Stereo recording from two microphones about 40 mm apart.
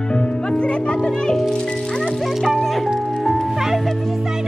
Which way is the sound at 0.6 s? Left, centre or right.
Left.